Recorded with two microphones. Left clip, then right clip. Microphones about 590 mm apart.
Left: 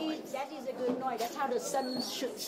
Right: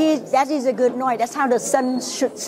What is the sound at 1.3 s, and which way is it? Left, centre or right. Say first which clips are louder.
Speech: right 14 dB; right.